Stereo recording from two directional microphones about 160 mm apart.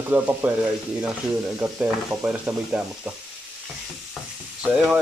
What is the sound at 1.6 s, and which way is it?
Stir, 10° right (ahead or behind).